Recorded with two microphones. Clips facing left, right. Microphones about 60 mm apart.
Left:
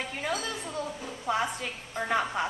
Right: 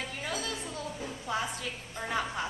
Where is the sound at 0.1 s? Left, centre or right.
Left.